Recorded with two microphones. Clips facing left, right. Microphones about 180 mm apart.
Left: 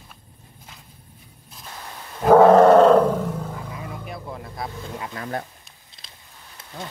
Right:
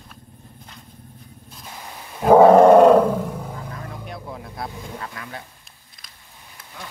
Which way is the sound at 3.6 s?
5° left (ahead or behind).